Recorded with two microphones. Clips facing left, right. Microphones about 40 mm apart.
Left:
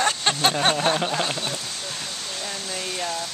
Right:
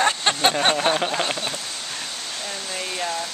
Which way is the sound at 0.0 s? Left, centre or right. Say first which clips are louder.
Right 2 dB; centre.